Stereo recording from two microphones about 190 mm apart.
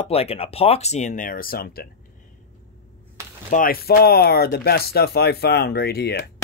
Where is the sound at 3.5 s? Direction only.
50° left (ahead or behind).